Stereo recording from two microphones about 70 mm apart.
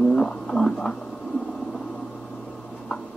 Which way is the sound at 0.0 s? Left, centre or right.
Centre.